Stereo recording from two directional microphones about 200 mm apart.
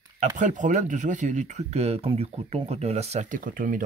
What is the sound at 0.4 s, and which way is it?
Speech, 40° right (ahead or behind).